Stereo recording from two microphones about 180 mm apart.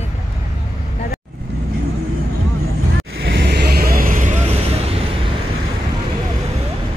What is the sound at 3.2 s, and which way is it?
Vehicle, 70° right (ahead or behind).